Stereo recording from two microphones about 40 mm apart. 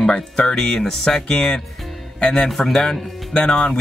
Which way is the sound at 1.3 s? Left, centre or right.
Left.